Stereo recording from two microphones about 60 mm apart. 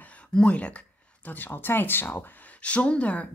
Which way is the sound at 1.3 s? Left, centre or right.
Left.